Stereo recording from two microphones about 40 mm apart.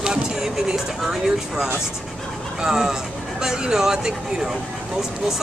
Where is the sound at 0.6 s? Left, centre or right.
Centre.